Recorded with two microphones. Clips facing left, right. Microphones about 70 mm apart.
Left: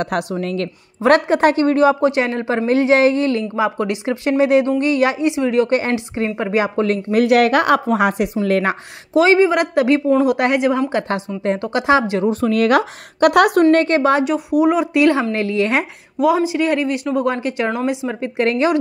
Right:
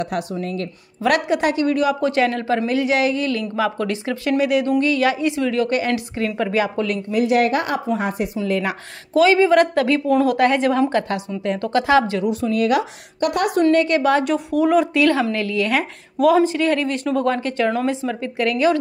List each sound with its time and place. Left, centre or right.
0.0 s a woman's voice: left
1.0 s a woman's voice: left
3.5 s speech: centre
7.1 s a woman's voice: left
9.1 s speech: left
11.1 s speech: left
12.2 s a woman's voice: left
12.4 s speech: left
13.6 s a woman's voice: left
13.8 s speech: left
14.2 s speech: centre
15.0 s speech: left
16.2 s speech: centre
18.4 s a woman's voice: left